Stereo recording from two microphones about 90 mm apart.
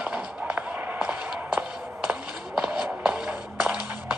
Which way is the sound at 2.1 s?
10° right (ahead or behind).